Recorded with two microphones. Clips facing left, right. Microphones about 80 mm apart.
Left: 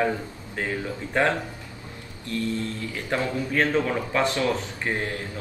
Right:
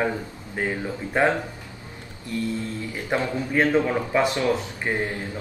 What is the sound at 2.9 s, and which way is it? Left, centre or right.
A man's voice, right.